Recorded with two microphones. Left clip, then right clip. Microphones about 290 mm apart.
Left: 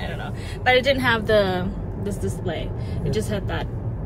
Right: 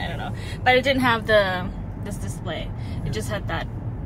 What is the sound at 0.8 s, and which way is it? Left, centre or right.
Speech, centre.